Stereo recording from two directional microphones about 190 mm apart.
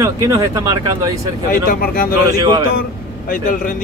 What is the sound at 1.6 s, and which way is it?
Speech, 50° left (ahead or behind).